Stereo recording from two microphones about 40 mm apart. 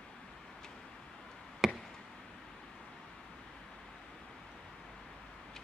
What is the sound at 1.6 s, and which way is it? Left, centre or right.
Chop, centre.